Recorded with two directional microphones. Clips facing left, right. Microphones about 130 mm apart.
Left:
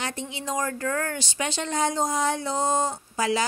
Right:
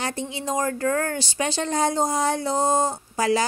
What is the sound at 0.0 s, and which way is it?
Speech, 35° right (ahead or behind).